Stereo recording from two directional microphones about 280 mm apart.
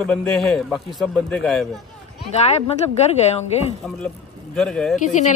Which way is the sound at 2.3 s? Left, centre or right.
Left.